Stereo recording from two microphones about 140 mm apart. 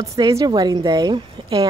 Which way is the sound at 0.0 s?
20° right (ahead or behind).